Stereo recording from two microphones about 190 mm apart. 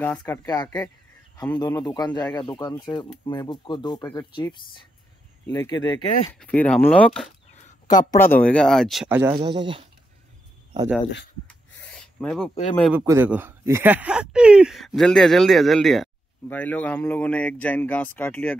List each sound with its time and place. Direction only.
0.0 s speech: 10° left (ahead or behind)
6.4 s speech: 5° left (ahead or behind)
7.8 s speech: 20° left (ahead or behind)
8.5 s speech: 5° left (ahead or behind)
9.3 s speech: 25° right (ahead or behind)
11.4 s a sound: 5° left (ahead or behind)
12.9 s speech: 15° right (ahead or behind); by 18.6 s 10° left (ahead or behind)